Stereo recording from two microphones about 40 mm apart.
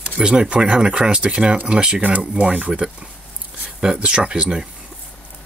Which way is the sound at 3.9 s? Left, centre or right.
Right.